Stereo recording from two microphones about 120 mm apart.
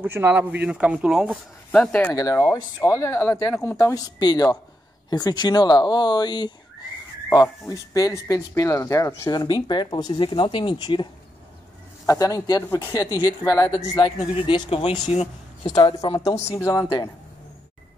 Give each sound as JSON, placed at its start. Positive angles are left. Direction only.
{"t": 0.0, "sound": "speech", "side_deg": -20}
{"t": 1.7, "sound": "speech", "side_deg": 10}
{"t": 2.1, "sound": "a woman's voice", "side_deg": 30}
{"t": 7.6, "sound": "speech", "side_deg": 30}
{"t": 12.1, "sound": "speech", "side_deg": 25}
{"t": 14.3, "sound": "speech", "side_deg": 50}
{"t": 14.8, "sound": "speech", "side_deg": 60}
{"t": 15.6, "sound": "speech", "side_deg": 35}
{"t": 16.2, "sound": "a woman's voice", "side_deg": 25}